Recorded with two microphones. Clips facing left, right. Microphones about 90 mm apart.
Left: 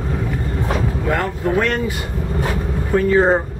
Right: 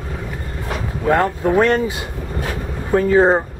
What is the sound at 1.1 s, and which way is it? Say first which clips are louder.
Speech: right 5 dB; 25° right (ahead or behind).